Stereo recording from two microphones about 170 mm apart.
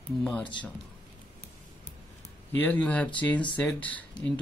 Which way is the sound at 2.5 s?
10° left (ahead or behind).